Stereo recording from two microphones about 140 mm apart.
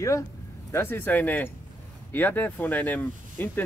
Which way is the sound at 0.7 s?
15° left (ahead or behind).